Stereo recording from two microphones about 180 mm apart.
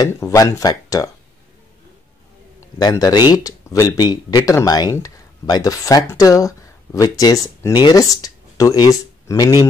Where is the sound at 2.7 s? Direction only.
20° left (ahead or behind).